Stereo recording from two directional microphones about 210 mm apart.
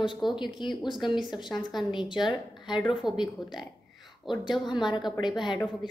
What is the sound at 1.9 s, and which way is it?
Speech, 20° left (ahead or behind).